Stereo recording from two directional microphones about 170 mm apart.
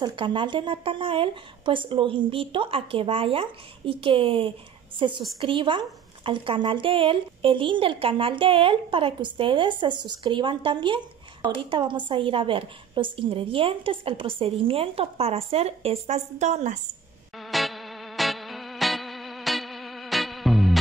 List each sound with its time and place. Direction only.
0.0 s a woman's voice: 30° right (ahead or behind); by 16.8 s 45° right (ahead or behind)
17.4 s music: centre (ahead or behind)